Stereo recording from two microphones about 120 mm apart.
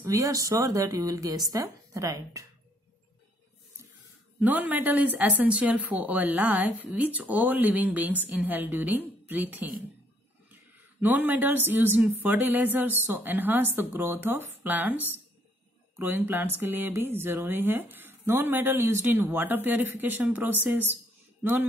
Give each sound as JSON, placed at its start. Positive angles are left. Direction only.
{"t": 0.0, "sound": "speech", "side_deg": -25}
{"t": 4.4, "sound": "speech", "side_deg": -15}
{"t": 11.0, "sound": "speech", "side_deg": -15}